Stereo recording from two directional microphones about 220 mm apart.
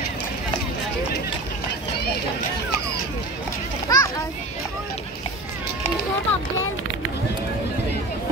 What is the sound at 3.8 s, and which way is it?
Children playing, 15° left (ahead or behind).